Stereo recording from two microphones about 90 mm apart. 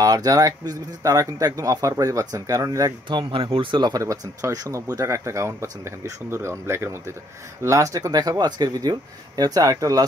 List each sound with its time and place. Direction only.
0.0 s speech: 45° right (ahead or behind)
3.1 s speech: 65° right (ahead or behind)
3.9 s speech: 40° right (ahead or behind)